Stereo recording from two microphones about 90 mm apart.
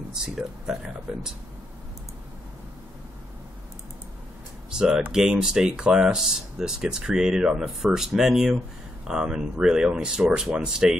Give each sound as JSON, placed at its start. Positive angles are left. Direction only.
{"t": 0.1, "sound": "speech", "side_deg": -5}
{"t": 4.6, "sound": "speech", "side_deg": -5}